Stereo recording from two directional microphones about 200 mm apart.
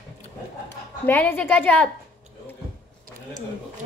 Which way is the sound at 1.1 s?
10° left (ahead or behind).